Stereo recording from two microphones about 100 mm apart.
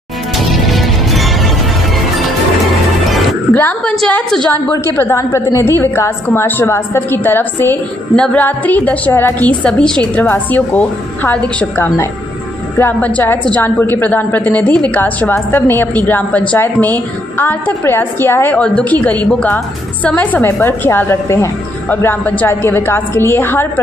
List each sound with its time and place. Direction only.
0.5 s music: centre (ahead or behind)
3.5 s a sound: 15° left (ahead or behind)
4.5 s a woman's voice: 25° left (ahead or behind)